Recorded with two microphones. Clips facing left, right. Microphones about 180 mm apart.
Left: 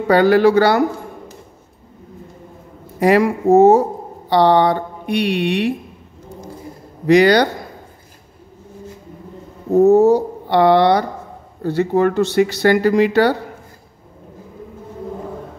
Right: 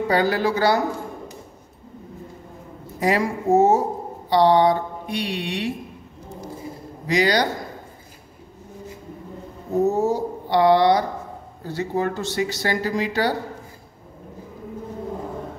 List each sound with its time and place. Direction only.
0.1 s speech: 65° left (ahead or behind)
3.0 s speech: 65° left (ahead or behind)
7.1 s speech: 60° left (ahead or behind)
9.8 s speech: 65° left (ahead or behind)